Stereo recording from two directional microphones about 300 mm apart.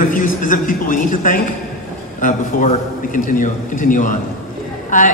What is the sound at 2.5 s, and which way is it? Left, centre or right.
A man's voice, left.